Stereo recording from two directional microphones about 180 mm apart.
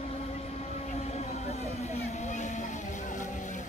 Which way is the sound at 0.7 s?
35° left (ahead or behind).